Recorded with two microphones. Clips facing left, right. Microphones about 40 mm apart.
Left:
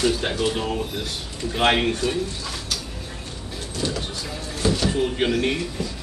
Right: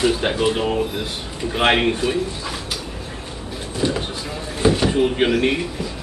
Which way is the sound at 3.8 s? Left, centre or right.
Centre.